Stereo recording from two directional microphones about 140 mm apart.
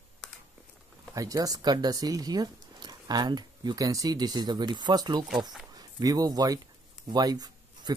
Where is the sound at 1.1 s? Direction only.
25° right (ahead or behind).